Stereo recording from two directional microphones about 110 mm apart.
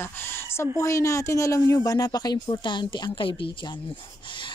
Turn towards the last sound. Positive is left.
turn(degrees=50)  # may be behind; listen again after turning